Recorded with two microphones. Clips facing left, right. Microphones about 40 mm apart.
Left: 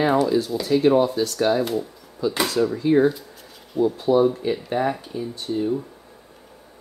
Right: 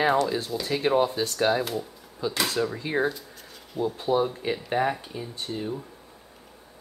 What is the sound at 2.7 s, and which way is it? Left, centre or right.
Speech, centre.